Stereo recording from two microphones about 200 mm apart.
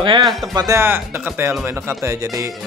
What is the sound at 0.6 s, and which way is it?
Speech, 15° right (ahead or behind).